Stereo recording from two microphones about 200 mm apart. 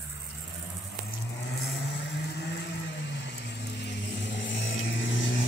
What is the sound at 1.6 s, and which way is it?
Vehicle, 60° left (ahead or behind).